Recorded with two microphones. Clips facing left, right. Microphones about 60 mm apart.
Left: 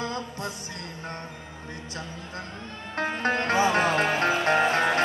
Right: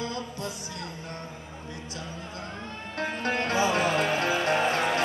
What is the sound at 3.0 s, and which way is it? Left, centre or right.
Music, left.